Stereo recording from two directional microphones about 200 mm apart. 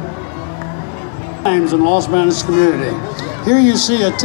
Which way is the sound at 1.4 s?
45° left (ahead or behind).